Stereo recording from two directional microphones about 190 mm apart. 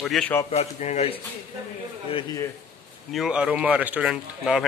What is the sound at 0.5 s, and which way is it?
A man's voice, 35° left (ahead or behind).